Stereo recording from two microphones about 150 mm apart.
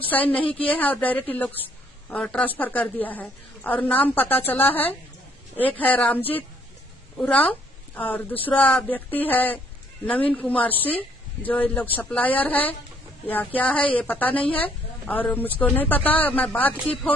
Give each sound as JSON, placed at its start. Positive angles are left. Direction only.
{"t": 0.1, "sound": "a woman's voice", "side_deg": 10}
{"t": 0.4, "sound": "a woman's voice", "side_deg": 35}
{"t": 0.7, "sound": "a woman's voice", "side_deg": 10}
{"t": 5.8, "sound": "a woman's voice", "side_deg": 10}